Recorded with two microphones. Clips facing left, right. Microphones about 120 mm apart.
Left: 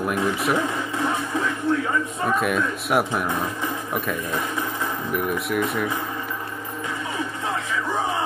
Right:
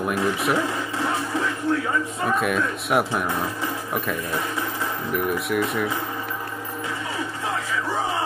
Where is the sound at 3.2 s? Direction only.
15° left (ahead or behind).